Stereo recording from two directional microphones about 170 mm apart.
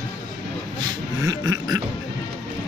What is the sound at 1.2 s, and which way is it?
Beatboxing, 20° right (ahead or behind).